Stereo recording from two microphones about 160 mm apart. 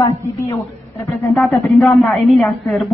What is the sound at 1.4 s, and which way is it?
A woman's voice, centre (ahead or behind).